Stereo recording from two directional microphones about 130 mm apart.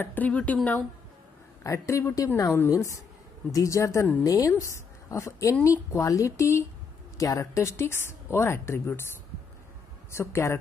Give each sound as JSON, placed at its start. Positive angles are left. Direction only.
{"t": 0.0, "sound": "a woman's voice", "side_deg": 15}
{"t": 1.6, "sound": "a woman's voice", "side_deg": 25}
{"t": 10.1, "sound": "a woman's voice", "side_deg": 20}